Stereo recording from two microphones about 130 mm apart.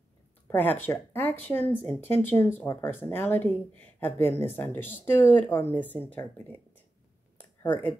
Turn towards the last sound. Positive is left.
turn(degrees=10)  # may be behind; listen again after turning